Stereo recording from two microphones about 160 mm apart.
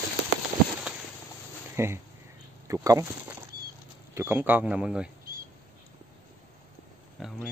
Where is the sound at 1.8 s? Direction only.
15° right (ahead or behind).